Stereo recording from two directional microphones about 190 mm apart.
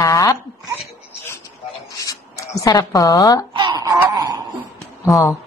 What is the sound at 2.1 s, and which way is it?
Speech, 20° left (ahead or behind).